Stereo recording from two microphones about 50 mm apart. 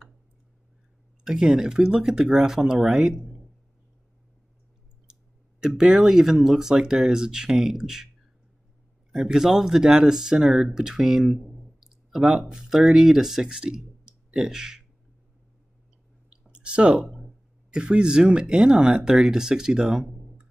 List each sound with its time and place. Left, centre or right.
1.2 s speech: centre
5.7 s speech: centre
9.1 s speech: centre
16.3 s clicking: right
17.7 s speech: right